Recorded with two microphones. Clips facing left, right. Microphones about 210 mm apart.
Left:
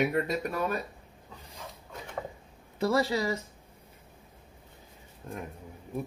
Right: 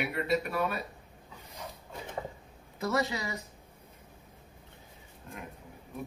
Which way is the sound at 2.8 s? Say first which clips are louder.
Left 4 dB; 30° left (ahead or behind).